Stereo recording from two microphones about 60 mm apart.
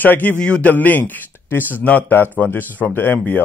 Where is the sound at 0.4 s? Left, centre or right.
Centre.